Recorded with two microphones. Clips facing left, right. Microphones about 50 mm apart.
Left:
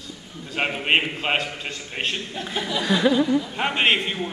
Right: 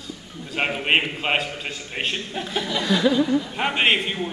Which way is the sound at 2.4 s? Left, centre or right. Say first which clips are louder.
Even; centre.